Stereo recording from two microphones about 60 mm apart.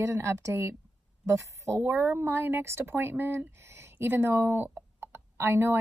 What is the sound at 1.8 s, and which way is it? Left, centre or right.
A woman's voice, right.